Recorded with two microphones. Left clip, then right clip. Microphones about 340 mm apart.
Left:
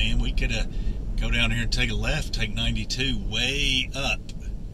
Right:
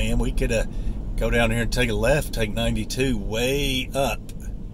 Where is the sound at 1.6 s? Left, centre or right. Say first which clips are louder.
Right 6 dB; centre.